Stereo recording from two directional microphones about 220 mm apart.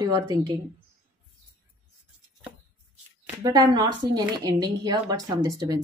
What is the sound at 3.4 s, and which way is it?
Speech, 20° right (ahead or behind).